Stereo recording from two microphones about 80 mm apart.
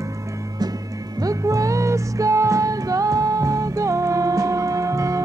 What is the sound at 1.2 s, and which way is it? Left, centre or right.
Music, right.